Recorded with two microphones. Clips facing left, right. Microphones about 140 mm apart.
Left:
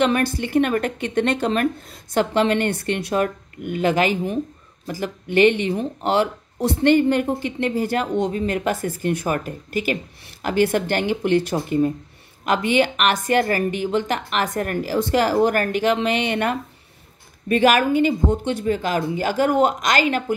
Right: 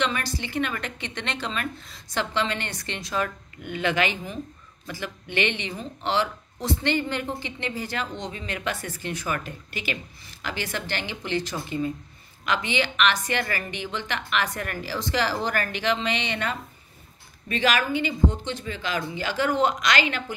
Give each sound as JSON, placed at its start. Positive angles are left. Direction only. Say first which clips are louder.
{"t": 0.0, "sound": "speech", "louder": "left 8 dB", "side_deg": 55}